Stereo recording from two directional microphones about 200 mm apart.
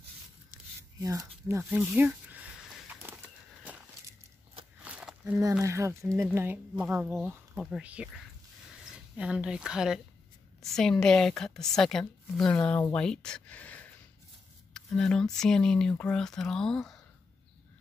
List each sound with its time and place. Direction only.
1.0 s speech: 15° right (ahead or behind)
1.6 s a sound: 10° right (ahead or behind)
4.8 s walk: 5° right (ahead or behind)
5.6 s a woman's voice: 15° right (ahead or behind); by 17.0 s centre (ahead or behind)